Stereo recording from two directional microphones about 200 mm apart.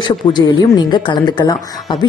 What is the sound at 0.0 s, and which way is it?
A woman's voice, 20° left (ahead or behind).